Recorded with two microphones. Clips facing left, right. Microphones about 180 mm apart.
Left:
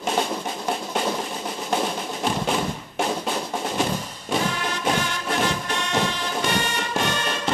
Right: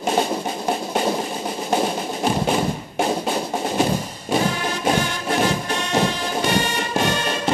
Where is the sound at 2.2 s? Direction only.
5° right (ahead or behind).